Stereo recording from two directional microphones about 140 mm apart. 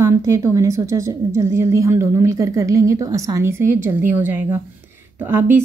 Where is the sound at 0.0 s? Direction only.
20° right (ahead or behind).